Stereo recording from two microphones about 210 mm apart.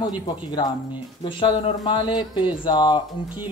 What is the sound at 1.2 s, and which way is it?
Speech, 20° left (ahead or behind).